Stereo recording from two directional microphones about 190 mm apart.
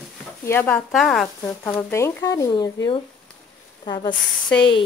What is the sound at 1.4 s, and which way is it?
Speech, 15° left (ahead or behind).